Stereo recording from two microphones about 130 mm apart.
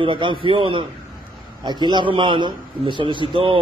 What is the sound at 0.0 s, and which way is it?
Speech, 40° right (ahead or behind).